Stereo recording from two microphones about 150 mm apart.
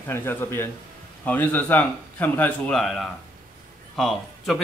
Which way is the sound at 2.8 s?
Centre (ahead or behind).